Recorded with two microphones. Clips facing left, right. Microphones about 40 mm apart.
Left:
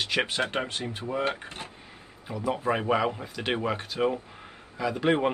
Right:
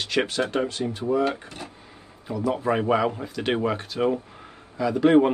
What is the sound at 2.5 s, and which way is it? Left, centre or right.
A man's voice, centre.